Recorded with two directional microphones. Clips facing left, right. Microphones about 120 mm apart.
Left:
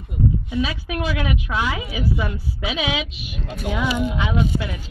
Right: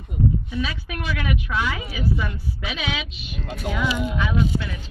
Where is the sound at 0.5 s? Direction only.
15° left (ahead or behind).